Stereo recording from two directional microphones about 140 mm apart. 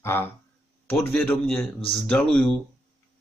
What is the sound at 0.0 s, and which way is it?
Speech, 15° left (ahead or behind).